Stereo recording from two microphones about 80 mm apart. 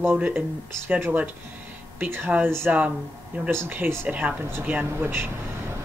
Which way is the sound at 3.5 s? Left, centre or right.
Right.